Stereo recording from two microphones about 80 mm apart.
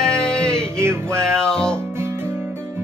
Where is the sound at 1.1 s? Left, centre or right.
Centre.